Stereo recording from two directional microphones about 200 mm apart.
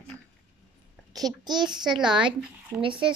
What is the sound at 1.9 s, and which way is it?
Speech, 5° right (ahead or behind).